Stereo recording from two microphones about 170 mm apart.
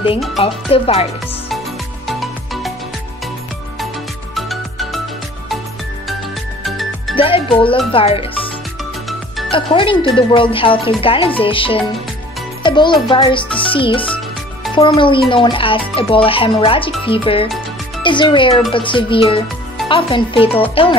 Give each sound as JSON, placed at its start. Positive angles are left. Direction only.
{"t": 0.4, "sound": "speech", "side_deg": 30}
{"t": 2.0, "sound": "music", "side_deg": 0}
{"t": 4.4, "sound": "music", "side_deg": 0}
{"t": 6.6, "sound": "music", "side_deg": 0}
{"t": 7.2, "sound": "speech", "side_deg": 30}
{"t": 9.5, "sound": "a child's voice", "side_deg": 30}
{"t": 14.0, "sound": "music", "side_deg": 10}
{"t": 14.8, "sound": "a child's voice", "side_deg": 30}